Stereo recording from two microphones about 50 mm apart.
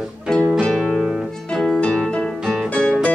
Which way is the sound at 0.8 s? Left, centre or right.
Centre.